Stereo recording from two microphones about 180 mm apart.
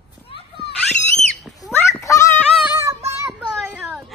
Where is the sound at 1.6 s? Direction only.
Centre (ahead or behind).